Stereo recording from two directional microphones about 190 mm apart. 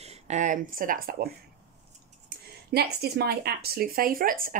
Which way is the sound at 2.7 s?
55° right (ahead or behind).